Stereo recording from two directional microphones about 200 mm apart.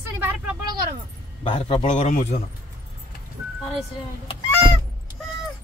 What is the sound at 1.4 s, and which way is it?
Speech, 30° left (ahead or behind).